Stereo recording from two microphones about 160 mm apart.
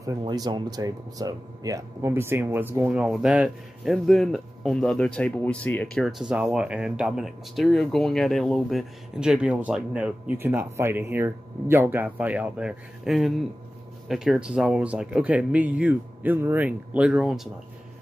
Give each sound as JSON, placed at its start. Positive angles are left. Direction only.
{"t": 0.2, "sound": "speech", "side_deg": -25}
{"t": 6.0, "sound": "speech", "side_deg": -5}